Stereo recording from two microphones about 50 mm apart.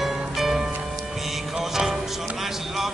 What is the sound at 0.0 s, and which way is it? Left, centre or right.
Music, centre.